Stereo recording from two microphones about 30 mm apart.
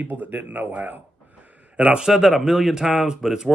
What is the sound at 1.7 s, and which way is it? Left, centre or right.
Speech, right.